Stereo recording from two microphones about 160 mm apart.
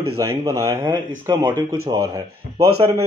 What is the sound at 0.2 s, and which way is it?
A man's voice, 20° right (ahead or behind).